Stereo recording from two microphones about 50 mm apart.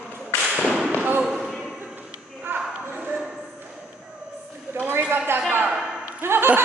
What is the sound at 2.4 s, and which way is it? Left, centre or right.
Clip-clop, right.